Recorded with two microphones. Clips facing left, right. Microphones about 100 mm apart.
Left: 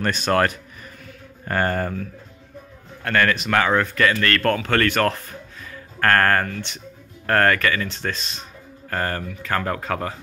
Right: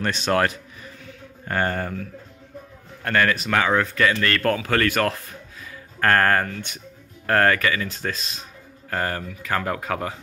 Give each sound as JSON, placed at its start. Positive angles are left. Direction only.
{"t": 0.0, "sound": "speech", "side_deg": 0}
{"t": 3.0, "sound": "a man's voice", "side_deg": -15}
{"t": 3.4, "sound": "speech", "side_deg": 0}
{"t": 4.1, "sound": "speech", "side_deg": -15}
{"t": 5.7, "sound": "speech", "side_deg": -15}